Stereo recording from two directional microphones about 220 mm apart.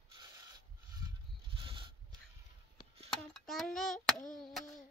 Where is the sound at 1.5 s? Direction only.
25° right (ahead or behind).